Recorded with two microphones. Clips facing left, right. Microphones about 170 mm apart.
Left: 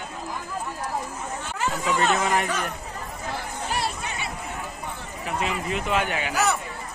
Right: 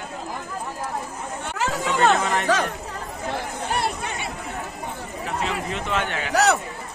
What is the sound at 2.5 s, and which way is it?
Speech, 90° right.